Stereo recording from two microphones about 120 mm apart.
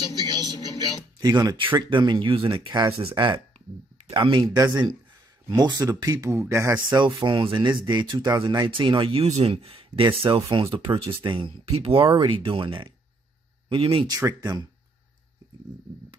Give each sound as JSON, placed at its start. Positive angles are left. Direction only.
{"t": 0.1, "sound": "speech", "side_deg": -35}
{"t": 5.5, "sound": "speech", "side_deg": -35}
{"t": 6.9, "sound": "speech", "side_deg": -40}
{"t": 9.2, "sound": "speech", "side_deg": -60}
{"t": 14.0, "sound": "speech", "side_deg": -30}